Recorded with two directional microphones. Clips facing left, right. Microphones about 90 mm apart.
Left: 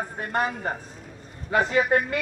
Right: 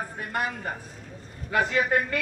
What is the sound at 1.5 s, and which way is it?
Speech, 25° left (ahead or behind).